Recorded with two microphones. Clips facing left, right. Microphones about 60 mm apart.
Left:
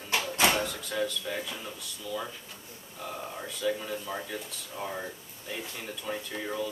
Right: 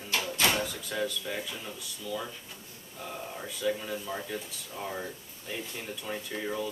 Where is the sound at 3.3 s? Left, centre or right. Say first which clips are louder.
Even; centre.